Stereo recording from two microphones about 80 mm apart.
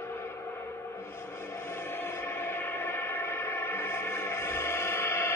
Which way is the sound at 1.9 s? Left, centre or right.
Left.